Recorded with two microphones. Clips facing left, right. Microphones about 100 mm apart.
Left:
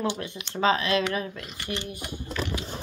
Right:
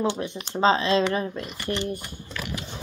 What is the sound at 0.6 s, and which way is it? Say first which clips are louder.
Speech: right 3 dB; 30° right (ahead or behind).